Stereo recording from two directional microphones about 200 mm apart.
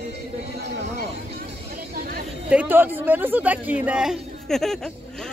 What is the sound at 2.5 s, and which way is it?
Speech, 10° right (ahead or behind).